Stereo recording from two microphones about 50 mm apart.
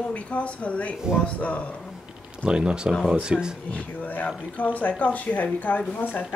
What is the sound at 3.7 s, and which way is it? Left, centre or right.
Speech, left.